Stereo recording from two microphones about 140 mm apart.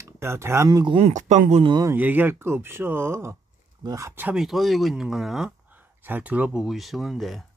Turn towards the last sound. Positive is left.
turn(degrees=0)  # may be behind; listen again after turning